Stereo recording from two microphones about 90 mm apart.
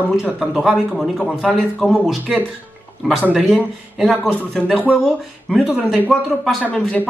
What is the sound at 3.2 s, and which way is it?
Speech, 10° right (ahead or behind).